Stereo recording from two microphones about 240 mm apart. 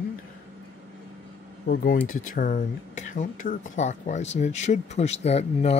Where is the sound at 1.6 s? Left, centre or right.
Left.